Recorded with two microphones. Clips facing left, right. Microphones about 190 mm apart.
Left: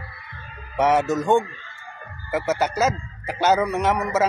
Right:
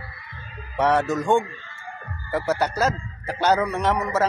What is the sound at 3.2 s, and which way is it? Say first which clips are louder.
Speech: left 1 dB; 15° left (ahead or behind).